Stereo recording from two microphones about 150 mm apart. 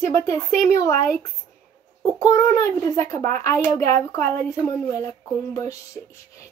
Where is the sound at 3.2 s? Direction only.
55° right (ahead or behind).